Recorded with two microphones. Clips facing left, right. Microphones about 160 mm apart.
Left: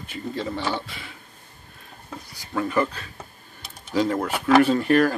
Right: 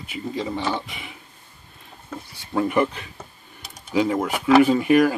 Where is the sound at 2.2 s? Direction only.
30° right (ahead or behind).